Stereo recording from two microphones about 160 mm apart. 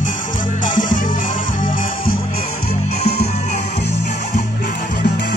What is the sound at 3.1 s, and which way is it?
Music, 40° left (ahead or behind).